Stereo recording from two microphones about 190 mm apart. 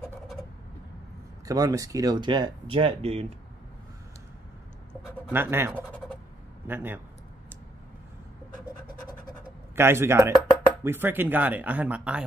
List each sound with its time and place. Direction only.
1.4 s speech: 20° right (ahead or behind)
5.3 s speech: 10° right (ahead or behind)
9.8 s speech: 15° right (ahead or behind)